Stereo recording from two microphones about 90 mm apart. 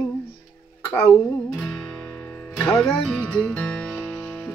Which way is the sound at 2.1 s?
25° left (ahead or behind).